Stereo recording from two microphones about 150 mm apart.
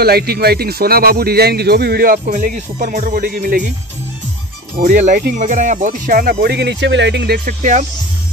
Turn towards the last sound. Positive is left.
turn(degrees=-55)  # may be behind; listen again after turning